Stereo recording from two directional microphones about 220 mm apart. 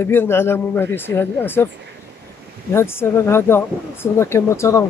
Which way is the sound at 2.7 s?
10° left (ahead or behind).